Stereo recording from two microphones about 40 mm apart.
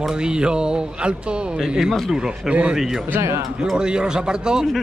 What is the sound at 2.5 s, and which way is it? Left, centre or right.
Speech, right.